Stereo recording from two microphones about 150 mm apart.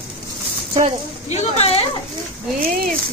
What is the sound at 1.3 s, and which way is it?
Speech, 45° left (ahead or behind).